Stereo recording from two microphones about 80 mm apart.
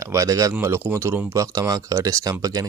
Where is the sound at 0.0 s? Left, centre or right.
Right.